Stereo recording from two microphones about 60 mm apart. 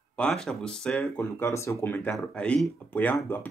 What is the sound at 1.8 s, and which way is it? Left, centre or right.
Speech, left.